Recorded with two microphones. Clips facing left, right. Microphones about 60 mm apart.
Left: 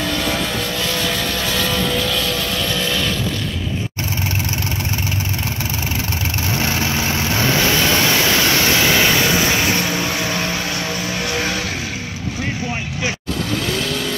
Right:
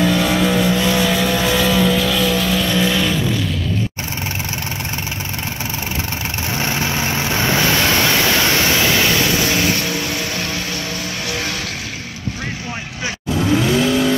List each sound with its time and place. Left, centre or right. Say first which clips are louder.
0.0 s vehicle: right 5 dB; centre
2.8 s vehicle: right 4 dB; centre
6.6 s vehicle: right 1 dB; centre
13.4 s vehicle: right 8 dB; centre